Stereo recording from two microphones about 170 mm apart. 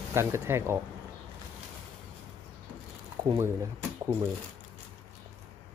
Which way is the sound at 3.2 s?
20° right (ahead or behind).